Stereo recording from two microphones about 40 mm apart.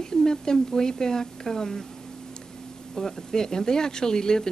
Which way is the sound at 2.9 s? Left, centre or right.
Centre.